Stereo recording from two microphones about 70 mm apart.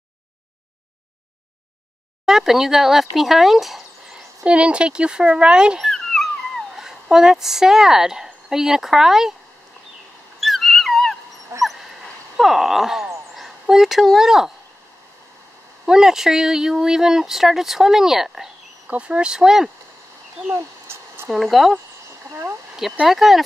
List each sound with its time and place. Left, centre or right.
2.2 s speech: centre
4.5 s speech: centre
5.8 s dog: centre
10.4 s dog: centre
11.5 s dog: right
12.4 s speech: centre
15.8 s speech: centre
18.9 s speech: centre
20.5 s a sound: right
21.3 s speech: centre
22.3 s speech: right
23.0 s speech: centre